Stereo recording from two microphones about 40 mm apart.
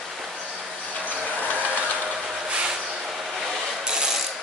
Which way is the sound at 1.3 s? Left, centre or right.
Right.